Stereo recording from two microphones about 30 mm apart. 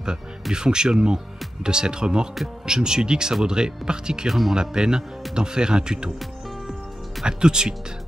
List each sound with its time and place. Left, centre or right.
0.0 s speech: right
4.3 s speech: centre
4.6 s speech: right
7.2 s speech: right